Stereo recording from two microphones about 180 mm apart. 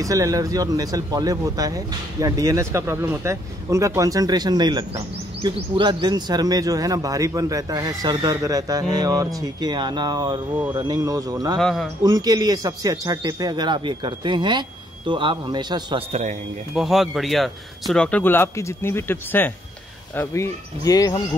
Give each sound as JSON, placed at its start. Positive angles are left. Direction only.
{"t": 0.0, "sound": "speech", "side_deg": -20}
{"t": 11.6, "sound": "speech", "side_deg": 0}
{"t": 12.0, "sound": "speech", "side_deg": -20}
{"t": 16.1, "sound": "speech", "side_deg": -40}
{"t": 16.7, "sound": "a man's voice", "side_deg": 0}